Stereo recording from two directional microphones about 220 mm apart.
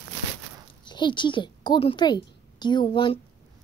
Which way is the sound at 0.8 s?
20° left (ahead or behind).